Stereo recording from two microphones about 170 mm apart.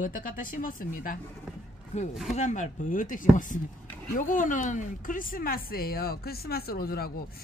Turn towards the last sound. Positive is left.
turn(degrees=65)  # may be behind; listen again after turning